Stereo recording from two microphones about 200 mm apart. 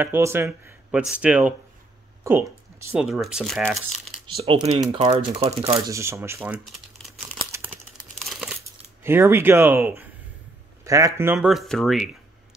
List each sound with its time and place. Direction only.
0.0 s speech: 10° right (ahead or behind)
4.4 s speech: 30° right (ahead or behind)
5.9 s speech: 15° right (ahead or behind)
8.2 s crumpling: centre (ahead or behind)
9.0 s speech: 10° right (ahead or behind)